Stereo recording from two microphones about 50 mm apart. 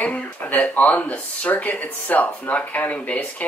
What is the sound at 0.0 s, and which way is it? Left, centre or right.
Speech, left.